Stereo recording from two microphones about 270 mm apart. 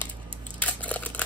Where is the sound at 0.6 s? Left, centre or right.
Centre.